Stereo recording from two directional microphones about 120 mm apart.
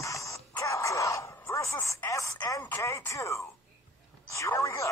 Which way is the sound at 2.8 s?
25° left (ahead or behind).